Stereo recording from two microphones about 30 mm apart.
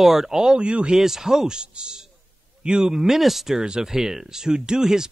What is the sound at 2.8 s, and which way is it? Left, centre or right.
Speech, centre.